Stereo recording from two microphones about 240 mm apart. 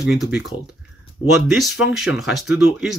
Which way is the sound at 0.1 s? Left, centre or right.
Centre.